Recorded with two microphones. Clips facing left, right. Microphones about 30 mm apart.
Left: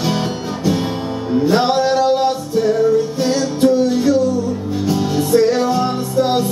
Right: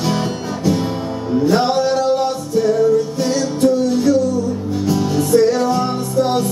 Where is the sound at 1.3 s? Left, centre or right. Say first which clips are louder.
Even; left.